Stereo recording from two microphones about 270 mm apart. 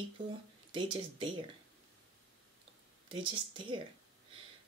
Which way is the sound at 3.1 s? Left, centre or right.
Centre.